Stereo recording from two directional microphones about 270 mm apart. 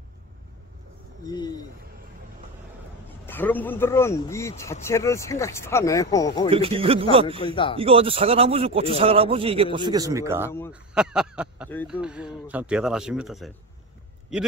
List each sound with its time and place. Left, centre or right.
1.2 s a sound: centre
3.3 s speech: centre
6.5 s a man's voice: right
7.3 s speech: centre
7.7 s a man's voice: right
10.7 s a sound: centre
11.9 s speech: centre